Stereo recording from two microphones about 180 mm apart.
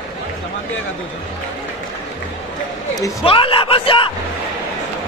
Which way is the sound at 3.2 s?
30° left (ahead or behind).